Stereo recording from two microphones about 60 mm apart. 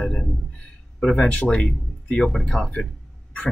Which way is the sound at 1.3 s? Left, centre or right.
Centre.